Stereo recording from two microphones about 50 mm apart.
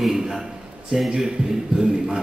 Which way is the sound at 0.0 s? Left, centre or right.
Centre.